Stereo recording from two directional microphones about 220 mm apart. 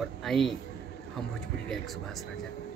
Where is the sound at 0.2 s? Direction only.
Centre (ahead or behind).